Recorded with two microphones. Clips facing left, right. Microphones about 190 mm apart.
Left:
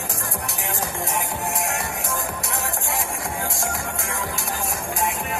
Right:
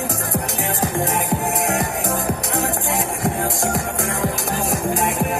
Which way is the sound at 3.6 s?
40° right (ahead or behind).